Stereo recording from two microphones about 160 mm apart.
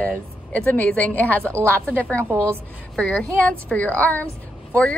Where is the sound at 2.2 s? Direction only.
15° right (ahead or behind).